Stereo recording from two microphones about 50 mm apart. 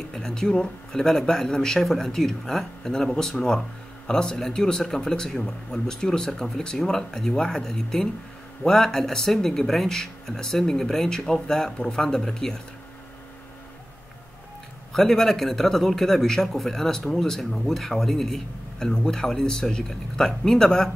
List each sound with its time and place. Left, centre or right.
0.1 s a man's voice: centre
14.9 s a man's voice: centre